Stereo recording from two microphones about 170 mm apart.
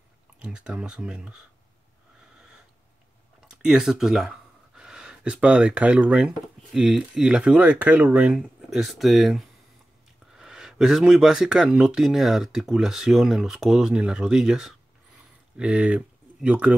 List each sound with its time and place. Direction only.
0.4 s speech: 5° right (ahead or behind)
3.4 s speech: 5° right (ahead or behind)